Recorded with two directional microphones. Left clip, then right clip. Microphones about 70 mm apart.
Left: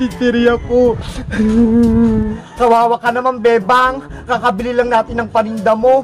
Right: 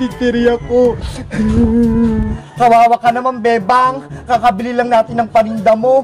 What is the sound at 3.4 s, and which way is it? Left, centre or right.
Speech, left.